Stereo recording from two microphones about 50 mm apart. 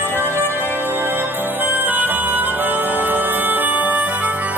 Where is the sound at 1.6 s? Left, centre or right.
Right.